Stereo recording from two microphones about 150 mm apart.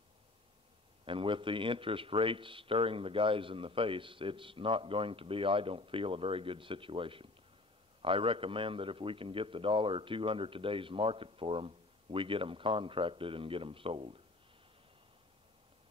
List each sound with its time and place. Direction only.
1.0 s a man's voice: 35° right (ahead or behind)